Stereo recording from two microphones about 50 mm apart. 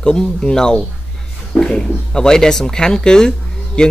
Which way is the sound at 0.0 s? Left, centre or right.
Centre.